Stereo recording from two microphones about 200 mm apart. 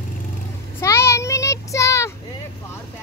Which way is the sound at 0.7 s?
15° left (ahead or behind).